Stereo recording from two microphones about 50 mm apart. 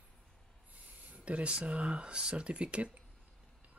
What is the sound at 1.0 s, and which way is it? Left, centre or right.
Speech, right.